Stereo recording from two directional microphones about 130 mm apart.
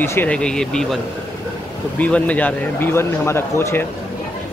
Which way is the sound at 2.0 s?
10° left (ahead or behind).